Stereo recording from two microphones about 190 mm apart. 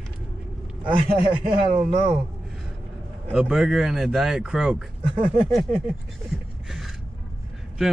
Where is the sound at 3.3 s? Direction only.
5° right (ahead or behind).